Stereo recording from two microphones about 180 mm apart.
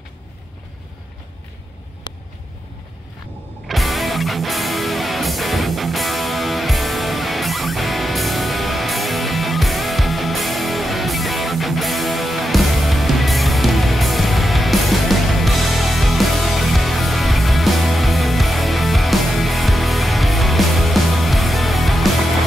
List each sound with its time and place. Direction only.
2.1 s vehicle: 25° left (ahead or behind)
3.6 s music: centre (ahead or behind)